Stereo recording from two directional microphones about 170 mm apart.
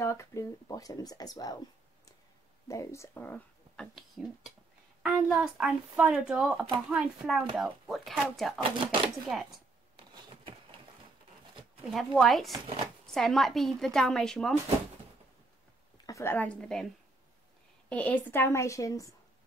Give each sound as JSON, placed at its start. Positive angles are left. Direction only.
{"t": 0.0, "sound": "speech", "side_deg": 15}
{"t": 2.7, "sound": "speech", "side_deg": 15}
{"t": 8.6, "sound": "speech", "side_deg": -30}
{"t": 9.3, "sound": "speech", "side_deg": 0}
{"t": 9.9, "sound": "a sound", "side_deg": -30}
{"t": 11.9, "sound": "speech", "side_deg": 0}
{"t": 16.1, "sound": "a woman's voice", "side_deg": 15}
{"t": 17.8, "sound": "a woman's voice", "side_deg": 10}